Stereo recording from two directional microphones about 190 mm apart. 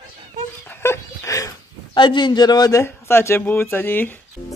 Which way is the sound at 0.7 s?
15° left (ahead or behind).